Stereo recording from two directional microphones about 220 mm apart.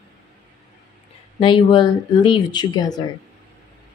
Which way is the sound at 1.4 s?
20° left (ahead or behind).